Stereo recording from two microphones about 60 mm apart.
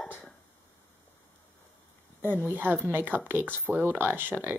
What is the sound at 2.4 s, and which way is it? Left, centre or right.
A woman's voice, right.